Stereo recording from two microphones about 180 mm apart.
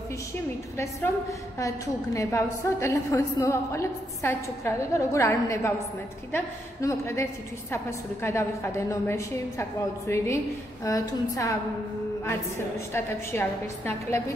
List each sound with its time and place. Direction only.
2.1 s a woman's voice: 15° left (ahead or behind)